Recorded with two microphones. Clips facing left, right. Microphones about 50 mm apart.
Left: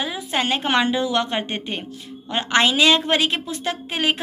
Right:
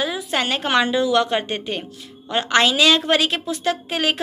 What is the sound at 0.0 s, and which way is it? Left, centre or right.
A woman's voice, centre.